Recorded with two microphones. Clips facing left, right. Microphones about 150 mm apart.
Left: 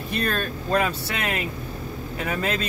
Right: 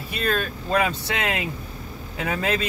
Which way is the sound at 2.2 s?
15° right (ahead or behind).